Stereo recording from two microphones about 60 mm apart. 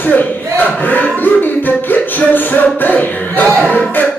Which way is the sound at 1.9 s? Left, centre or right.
Left.